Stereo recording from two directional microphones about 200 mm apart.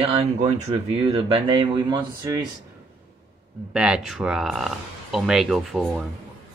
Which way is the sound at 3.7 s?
5° right (ahead or behind).